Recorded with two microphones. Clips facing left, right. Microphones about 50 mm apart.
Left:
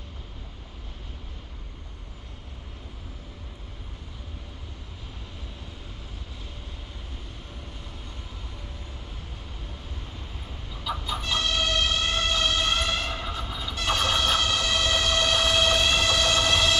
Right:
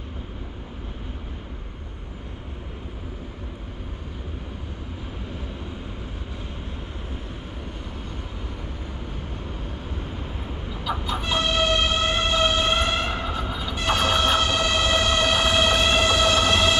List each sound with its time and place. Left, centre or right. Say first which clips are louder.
9.9 s vehicle: right 8 dB; right
11.0 s chicken: right 3 dB; right